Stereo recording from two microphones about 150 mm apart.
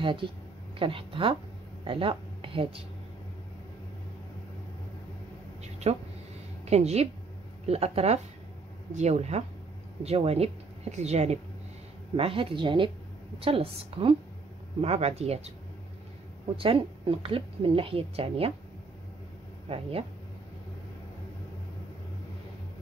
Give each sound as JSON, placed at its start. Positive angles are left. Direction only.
{"t": 0.0, "sound": "a woman's voice", "side_deg": -35}
{"t": 5.6, "sound": "a sound", "side_deg": -50}
{"t": 6.6, "sound": "a woman's voice", "side_deg": -45}
{"t": 16.5, "sound": "a woman's voice", "side_deg": -35}
{"t": 19.7, "sound": "a woman's voice", "side_deg": -40}